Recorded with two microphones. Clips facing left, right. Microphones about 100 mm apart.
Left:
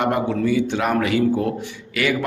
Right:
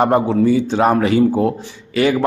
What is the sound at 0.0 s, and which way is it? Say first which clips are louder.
A man's voice: right 6 dB; 25° right (ahead or behind).